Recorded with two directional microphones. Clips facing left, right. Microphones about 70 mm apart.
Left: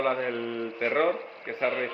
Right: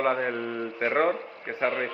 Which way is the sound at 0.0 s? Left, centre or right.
Right.